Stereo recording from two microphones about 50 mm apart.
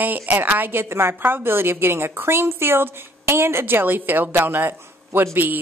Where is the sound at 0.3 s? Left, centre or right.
Right.